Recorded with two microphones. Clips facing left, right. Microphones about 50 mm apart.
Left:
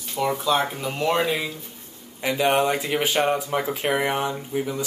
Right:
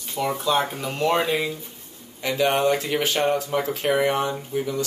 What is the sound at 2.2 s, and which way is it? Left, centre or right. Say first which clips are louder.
Speech: even; centre.